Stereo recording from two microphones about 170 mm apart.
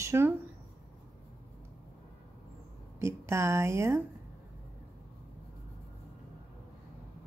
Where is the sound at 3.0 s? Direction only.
15° right (ahead or behind).